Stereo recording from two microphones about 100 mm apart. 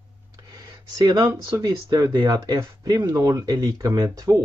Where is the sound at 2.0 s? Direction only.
50° right (ahead or behind).